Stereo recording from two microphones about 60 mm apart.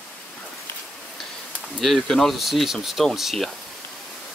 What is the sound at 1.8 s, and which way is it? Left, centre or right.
Speech, centre.